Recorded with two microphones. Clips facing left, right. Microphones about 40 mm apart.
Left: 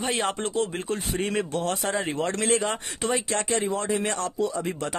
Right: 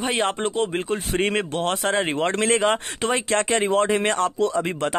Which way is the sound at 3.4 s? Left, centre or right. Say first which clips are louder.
Right 6 dB; right.